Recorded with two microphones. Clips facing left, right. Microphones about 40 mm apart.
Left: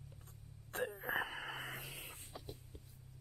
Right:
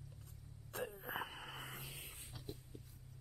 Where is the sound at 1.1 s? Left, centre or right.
Left.